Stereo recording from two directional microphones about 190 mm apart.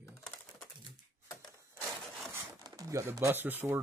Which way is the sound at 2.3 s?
20° right (ahead or behind).